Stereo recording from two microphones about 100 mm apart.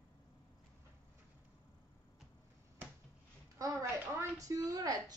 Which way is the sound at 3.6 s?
30° right (ahead or behind).